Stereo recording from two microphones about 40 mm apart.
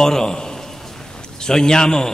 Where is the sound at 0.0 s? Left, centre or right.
Centre.